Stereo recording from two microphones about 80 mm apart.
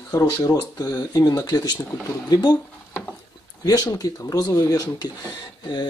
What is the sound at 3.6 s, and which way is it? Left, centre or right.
Speech, left.